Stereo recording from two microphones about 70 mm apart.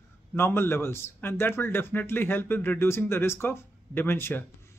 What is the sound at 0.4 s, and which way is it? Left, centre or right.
Speech, left.